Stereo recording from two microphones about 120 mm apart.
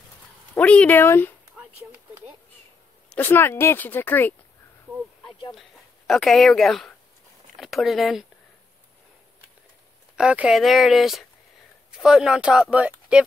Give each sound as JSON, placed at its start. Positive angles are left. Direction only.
{"t": 0.6, "sound": "speech", "side_deg": 10}
{"t": 3.2, "sound": "speech", "side_deg": 20}
{"t": 5.5, "sound": "speech", "side_deg": 0}
{"t": 10.1, "sound": "speech", "side_deg": -10}